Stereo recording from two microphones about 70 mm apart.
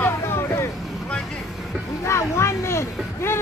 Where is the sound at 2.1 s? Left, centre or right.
Left.